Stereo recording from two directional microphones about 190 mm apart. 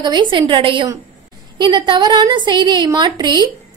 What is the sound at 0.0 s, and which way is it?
A woman's voice, 25° right (ahead or behind).